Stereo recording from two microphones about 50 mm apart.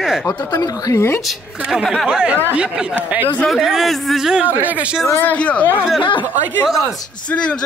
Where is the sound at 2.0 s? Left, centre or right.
Centre.